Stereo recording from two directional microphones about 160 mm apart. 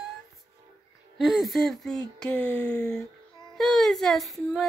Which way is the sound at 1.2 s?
Centre (ahead or behind).